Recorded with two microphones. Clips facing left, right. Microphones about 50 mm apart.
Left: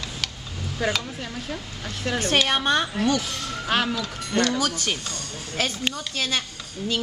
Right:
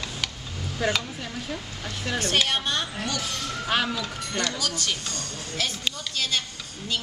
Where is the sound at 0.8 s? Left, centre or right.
Centre.